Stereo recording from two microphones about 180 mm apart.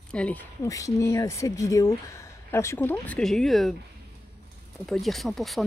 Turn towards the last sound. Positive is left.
turn(degrees=0)  # may be behind; listen again after turning